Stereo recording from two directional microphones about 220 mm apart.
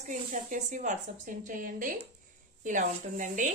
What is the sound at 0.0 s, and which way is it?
A woman's voice, 35° right (ahead or behind).